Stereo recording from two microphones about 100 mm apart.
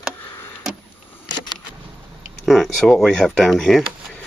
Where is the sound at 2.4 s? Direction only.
5° left (ahead or behind).